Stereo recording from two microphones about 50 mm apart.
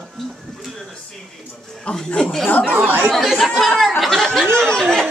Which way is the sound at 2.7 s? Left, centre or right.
Right.